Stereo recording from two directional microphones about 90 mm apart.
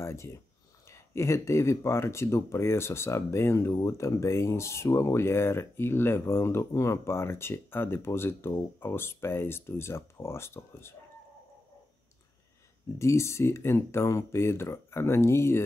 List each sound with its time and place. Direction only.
0.0 s a sound: 30° left (ahead or behind)
0.8 s speech: 30° left (ahead or behind)
13.0 s speech: 30° left (ahead or behind)